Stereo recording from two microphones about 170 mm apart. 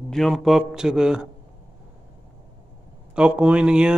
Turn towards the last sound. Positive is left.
turn(degrees=-5)  # may be behind; listen again after turning